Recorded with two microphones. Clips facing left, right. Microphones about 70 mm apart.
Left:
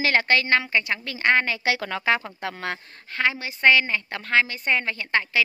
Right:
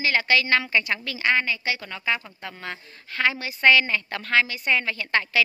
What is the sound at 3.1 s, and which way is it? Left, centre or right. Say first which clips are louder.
A woman's voice: even; left.